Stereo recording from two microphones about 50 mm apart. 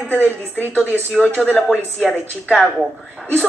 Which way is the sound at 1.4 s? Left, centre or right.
Centre.